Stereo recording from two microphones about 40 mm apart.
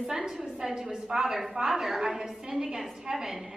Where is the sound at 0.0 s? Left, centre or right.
Right.